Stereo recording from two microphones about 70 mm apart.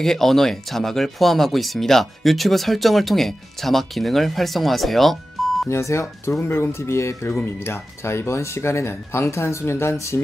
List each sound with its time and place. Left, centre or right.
0.0 s speech: centre
5.7 s speech: left